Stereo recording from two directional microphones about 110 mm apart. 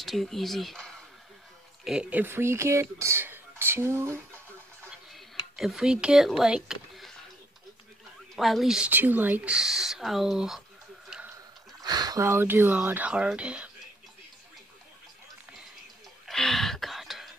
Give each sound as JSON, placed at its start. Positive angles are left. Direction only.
{"t": 0.0, "sound": "speech", "side_deg": 0}
{"t": 1.9, "sound": "speech", "side_deg": -10}
{"t": 5.1, "sound": "speech", "side_deg": 0}
{"t": 8.4, "sound": "speech", "side_deg": 0}
{"t": 8.9, "sound": "speech", "side_deg": -15}
{"t": 11.8, "sound": "speech", "side_deg": -40}
{"t": 16.3, "sound": "a sound", "side_deg": 0}